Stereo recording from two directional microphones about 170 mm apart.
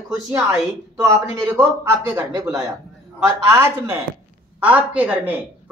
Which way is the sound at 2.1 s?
15° right (ahead or behind).